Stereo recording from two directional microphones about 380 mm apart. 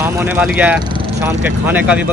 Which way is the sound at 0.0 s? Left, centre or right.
Centre.